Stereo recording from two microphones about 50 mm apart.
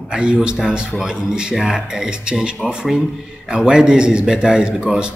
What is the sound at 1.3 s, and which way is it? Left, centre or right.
Speech, centre.